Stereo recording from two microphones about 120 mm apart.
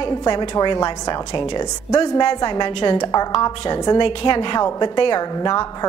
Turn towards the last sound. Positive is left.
turn(degrees=30)  # may be behind; listen again after turning